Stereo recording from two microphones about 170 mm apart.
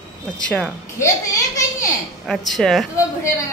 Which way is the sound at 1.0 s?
20° left (ahead or behind).